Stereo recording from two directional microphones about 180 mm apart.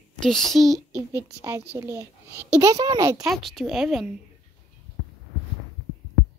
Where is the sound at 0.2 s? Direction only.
Centre (ahead or behind).